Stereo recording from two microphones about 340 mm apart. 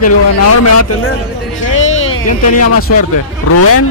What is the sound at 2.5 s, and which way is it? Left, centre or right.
A man's voice, left.